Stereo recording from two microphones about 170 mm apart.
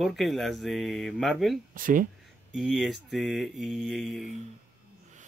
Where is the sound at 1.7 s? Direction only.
55° right (ahead or behind).